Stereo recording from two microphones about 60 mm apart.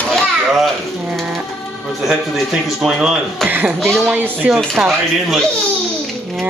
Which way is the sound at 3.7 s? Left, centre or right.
Centre.